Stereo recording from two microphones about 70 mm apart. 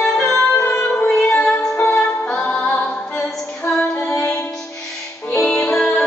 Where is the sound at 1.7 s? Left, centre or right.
Centre.